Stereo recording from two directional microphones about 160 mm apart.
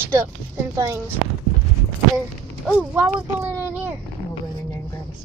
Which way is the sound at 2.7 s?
5° right (ahead or behind).